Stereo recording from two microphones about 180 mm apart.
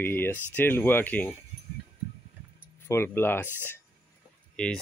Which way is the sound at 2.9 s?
15° left (ahead or behind).